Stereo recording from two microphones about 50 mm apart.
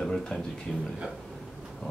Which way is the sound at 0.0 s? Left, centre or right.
Centre.